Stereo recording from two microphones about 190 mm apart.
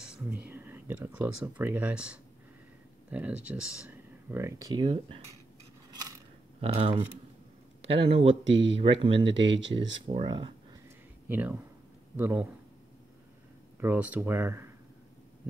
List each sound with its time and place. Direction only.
0.0 s speech: 5° right (ahead or behind); by 5.2 s 30° right (ahead or behind)
6.6 s speech: 30° right (ahead or behind)
8.5 s speech: 75° right (ahead or behind)
8.7 s speech: 25° right (ahead or behind)
9.3 s speech: 75° right (ahead or behind)
10.0 s speech: 25° right (ahead or behind)
11.2 s speech: 10° right (ahead or behind)
13.7 s speech: 10° right (ahead or behind)